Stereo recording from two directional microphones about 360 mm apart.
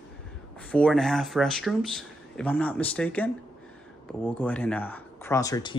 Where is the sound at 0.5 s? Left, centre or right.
Centre.